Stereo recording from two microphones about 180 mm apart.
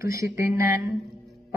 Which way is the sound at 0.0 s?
15° right (ahead or behind).